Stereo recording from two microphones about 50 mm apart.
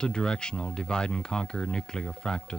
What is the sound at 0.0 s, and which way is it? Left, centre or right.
Speech, centre.